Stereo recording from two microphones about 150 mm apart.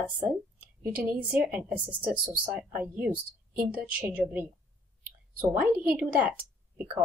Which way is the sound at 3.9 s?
10° right (ahead or behind).